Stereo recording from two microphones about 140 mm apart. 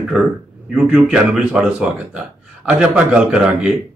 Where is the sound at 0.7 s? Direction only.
10° right (ahead or behind).